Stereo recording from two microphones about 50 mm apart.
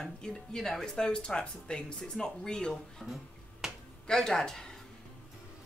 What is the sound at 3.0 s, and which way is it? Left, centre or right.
Speech, centre.